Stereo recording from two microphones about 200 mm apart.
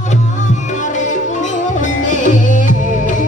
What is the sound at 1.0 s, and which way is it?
Music, 40° left (ahead or behind).